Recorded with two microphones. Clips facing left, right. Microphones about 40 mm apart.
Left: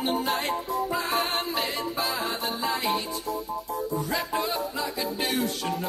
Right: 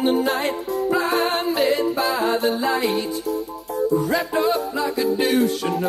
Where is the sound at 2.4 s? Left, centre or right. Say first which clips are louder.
Right 7 dB; right.